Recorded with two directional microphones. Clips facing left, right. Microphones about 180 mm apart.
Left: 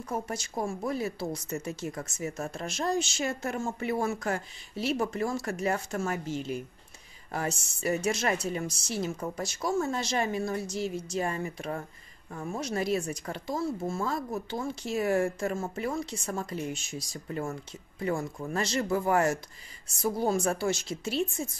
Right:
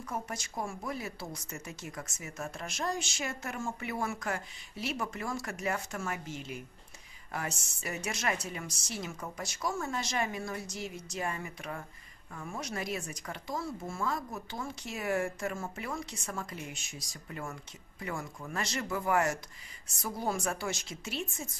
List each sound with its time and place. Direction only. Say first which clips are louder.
0.1 s speech: left 5 dB; 30° left (ahead or behind)